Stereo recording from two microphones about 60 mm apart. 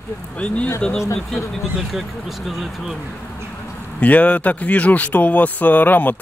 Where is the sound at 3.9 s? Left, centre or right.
Left.